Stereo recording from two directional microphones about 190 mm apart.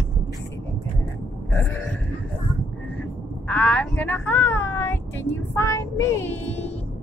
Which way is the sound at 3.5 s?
5° left (ahead or behind).